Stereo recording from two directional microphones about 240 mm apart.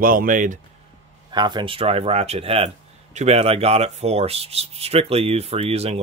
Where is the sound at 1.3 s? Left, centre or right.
Centre.